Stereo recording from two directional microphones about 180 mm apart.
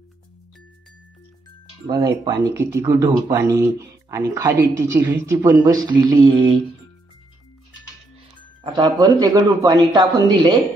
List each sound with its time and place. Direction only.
1.9 s a man's voice: 20° right (ahead or behind)
8.7 s a man's voice: 20° right (ahead or behind)